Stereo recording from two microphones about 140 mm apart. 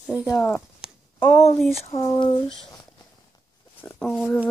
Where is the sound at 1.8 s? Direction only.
45° left (ahead or behind).